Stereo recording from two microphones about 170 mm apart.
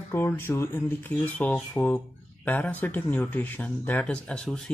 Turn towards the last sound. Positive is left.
turn(degrees=5)  # may be behind; listen again after turning